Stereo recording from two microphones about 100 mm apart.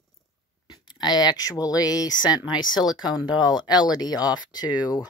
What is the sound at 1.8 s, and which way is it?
Speech, 40° left (ahead or behind).